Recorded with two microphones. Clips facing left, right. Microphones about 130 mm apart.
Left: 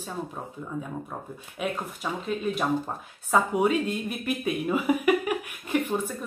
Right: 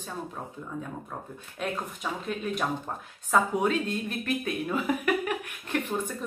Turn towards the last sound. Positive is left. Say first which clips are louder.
# left 4 dB
turn(degrees=5)  # may be behind; listen again after turning